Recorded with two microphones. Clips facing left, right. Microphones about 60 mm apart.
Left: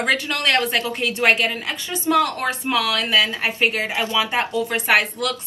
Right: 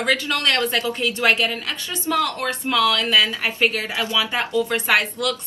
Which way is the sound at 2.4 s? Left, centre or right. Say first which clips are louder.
Right 1 dB; centre.